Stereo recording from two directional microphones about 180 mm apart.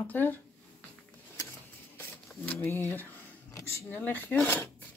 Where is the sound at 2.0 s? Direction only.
10° left (ahead or behind).